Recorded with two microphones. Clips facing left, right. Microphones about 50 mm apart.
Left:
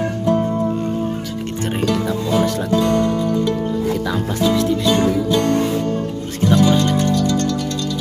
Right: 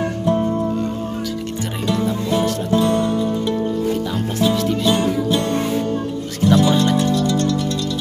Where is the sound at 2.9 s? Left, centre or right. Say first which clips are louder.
Left 1 dB; left.